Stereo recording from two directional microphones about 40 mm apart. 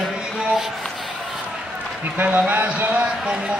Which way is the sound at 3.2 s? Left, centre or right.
Right.